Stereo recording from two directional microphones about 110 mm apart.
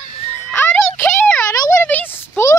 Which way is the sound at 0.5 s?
15° left (ahead or behind).